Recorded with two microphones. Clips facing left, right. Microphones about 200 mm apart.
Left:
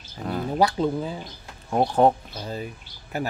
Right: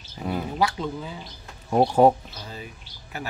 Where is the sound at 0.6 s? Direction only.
35° left (ahead or behind).